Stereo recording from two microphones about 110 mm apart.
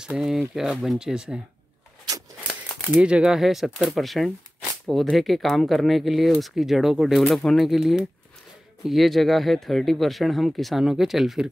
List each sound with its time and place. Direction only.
0.0 s speech: 5° right (ahead or behind)
2.9 s speech: 10° right (ahead or behind)